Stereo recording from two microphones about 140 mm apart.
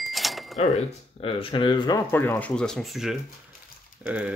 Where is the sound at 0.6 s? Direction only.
60° left (ahead or behind).